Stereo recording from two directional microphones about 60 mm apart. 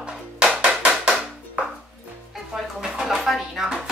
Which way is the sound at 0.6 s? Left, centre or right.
Centre.